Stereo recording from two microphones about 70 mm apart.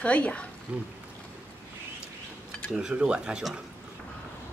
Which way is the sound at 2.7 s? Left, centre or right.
Centre.